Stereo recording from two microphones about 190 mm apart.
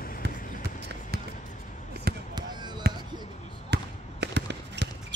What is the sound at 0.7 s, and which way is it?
Basketball bounce, 65° right (ahead or behind).